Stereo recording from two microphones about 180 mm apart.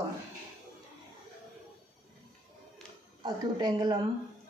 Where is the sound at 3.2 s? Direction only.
25° right (ahead or behind).